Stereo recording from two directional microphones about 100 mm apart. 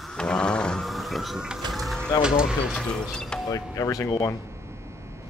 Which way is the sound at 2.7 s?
5° left (ahead or behind).